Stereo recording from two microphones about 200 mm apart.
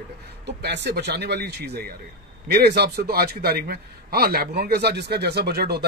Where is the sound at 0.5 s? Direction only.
55° right (ahead or behind).